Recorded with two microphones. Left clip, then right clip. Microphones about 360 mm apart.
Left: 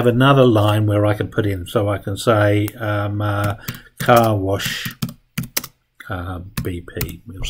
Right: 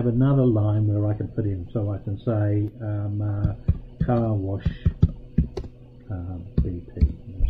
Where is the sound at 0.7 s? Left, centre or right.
Centre.